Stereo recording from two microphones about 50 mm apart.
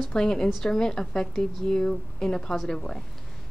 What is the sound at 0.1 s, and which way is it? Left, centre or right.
A woman's voice, centre.